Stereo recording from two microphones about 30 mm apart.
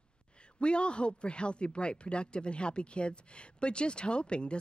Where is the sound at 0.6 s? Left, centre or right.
Left.